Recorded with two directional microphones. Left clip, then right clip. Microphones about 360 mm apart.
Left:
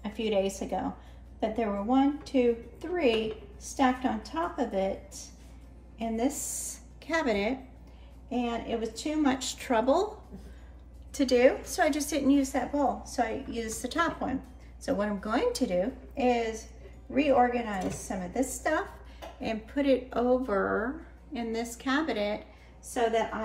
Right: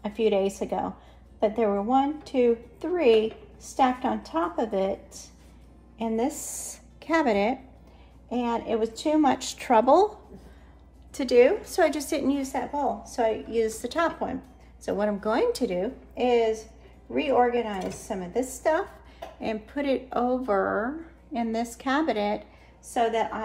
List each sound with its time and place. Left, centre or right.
0.0 s a sound: centre
0.6 s a woman's voice: centre
8.6 s a woman's voice: centre
11.1 s a woman's voice: centre
17.1 s a woman's voice: centre